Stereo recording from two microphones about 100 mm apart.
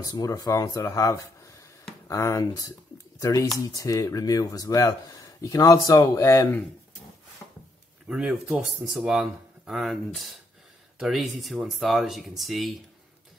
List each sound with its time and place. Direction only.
0.0 s speech: 35° left (ahead or behind)
7.4 s a sound: 20° left (ahead or behind)
8.1 s speech: 5° right (ahead or behind)